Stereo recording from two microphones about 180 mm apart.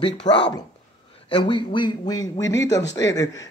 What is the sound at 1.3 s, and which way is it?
Speech, 25° left (ahead or behind).